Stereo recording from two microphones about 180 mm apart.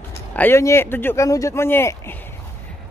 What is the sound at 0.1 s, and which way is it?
Speech, 10° left (ahead or behind).